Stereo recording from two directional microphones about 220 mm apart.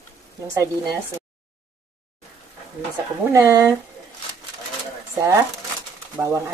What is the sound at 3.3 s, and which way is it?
Speech, 15° right (ahead or behind).